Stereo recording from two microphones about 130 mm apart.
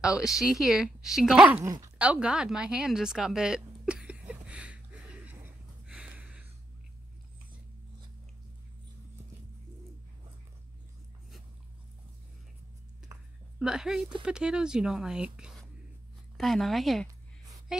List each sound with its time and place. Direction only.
0.0 s a woman's voice: 5° right (ahead or behind)
1.6 s speech: 25° right (ahead or behind)
2.0 s a sound: 10° right (ahead or behind)
13.6 s a woman's voice: 5° right (ahead or behind)